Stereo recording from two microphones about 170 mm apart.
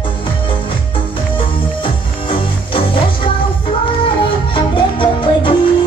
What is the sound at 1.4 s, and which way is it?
Music, 30° left (ahead or behind).